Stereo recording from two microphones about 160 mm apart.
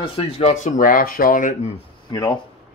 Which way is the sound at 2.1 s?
30° left (ahead or behind).